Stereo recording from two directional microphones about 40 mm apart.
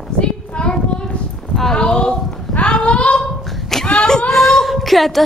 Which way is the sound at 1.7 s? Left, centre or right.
Centre.